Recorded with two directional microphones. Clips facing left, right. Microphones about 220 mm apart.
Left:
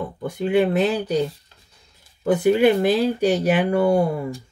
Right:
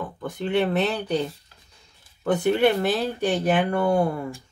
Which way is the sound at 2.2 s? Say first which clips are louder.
Left 4 dB; 10° left (ahead or behind).